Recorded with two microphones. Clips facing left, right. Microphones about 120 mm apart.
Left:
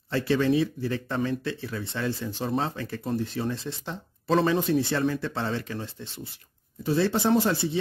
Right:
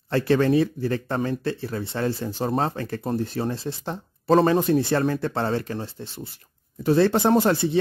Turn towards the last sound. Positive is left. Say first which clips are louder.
# right 4 dB
turn(degrees=-55)  # may be behind; listen again after turning